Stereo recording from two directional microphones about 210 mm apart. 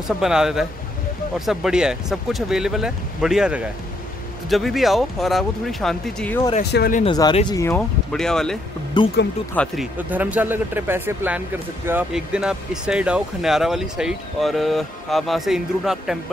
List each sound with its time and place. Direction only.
0.2 s speech: 5° right (ahead or behind)
6.6 s speech: 50° left (ahead or behind)
7.1 s speech: 20° left (ahead or behind); by 8.5 s centre (ahead or behind)
9.0 s speech: 20° left (ahead or behind)
9.5 s speech: 5° left (ahead or behind)
9.9 s speech: 10° right (ahead or behind)